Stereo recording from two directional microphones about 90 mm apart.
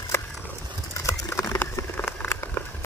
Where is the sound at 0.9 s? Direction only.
35° left (ahead or behind).